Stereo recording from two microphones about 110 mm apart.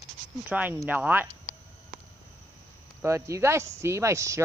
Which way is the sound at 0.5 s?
15° right (ahead or behind).